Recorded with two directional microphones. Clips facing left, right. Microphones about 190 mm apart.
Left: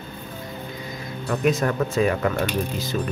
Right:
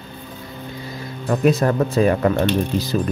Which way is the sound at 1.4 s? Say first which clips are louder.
Right 4 dB; 35° right (ahead or behind).